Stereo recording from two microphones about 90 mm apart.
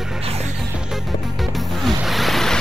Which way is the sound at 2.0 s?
Centre (ahead or behind).